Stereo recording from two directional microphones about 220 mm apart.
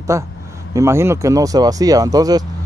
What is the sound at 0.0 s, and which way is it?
Speech, 15° right (ahead or behind).